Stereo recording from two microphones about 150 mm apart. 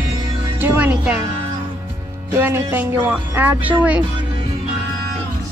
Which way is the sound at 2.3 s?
15° right (ahead or behind).